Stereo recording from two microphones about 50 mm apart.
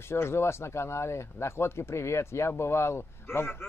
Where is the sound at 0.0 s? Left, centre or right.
Left.